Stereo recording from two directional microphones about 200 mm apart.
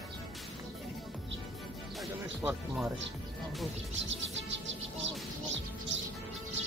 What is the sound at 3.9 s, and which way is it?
Music, 65° right (ahead or behind).